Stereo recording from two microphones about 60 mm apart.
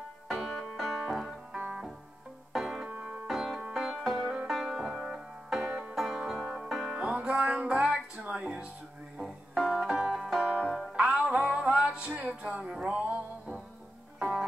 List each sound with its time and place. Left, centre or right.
0.3 s music: centre
2.5 s music: centre
2.8 s music: right
3.3 s music: centre
5.9 s music: centre
6.4 s banjo: centre
6.9 s music: centre
9.2 s music: centre
11.0 s music: centre
12.9 s music: right